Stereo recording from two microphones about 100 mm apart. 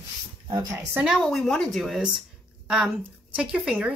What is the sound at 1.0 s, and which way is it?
A woman's voice, 5° right (ahead or behind).